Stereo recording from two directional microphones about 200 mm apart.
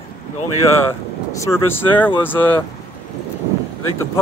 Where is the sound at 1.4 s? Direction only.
10° left (ahead or behind).